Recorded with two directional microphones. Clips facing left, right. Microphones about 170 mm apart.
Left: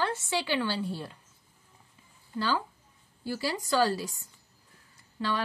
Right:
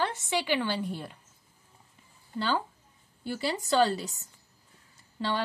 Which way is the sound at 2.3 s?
25° right (ahead or behind).